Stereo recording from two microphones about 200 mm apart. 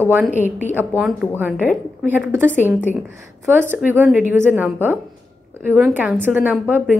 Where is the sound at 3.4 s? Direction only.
10° right (ahead or behind).